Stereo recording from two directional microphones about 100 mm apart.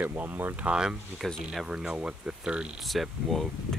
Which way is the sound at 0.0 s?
20° right (ahead or behind).